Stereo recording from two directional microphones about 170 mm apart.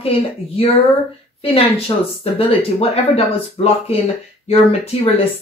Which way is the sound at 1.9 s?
25° left (ahead or behind).